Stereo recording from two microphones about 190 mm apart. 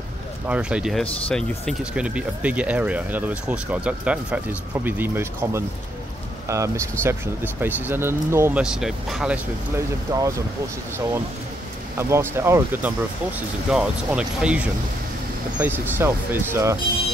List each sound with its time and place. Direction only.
0.5 s speech: 5° right (ahead or behind)
10.1 s speech: 15° right (ahead or behind)
12.0 s speech: 15° right (ahead or behind)